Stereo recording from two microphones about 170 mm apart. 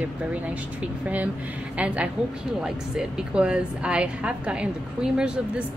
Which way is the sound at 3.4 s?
5° right (ahead or behind).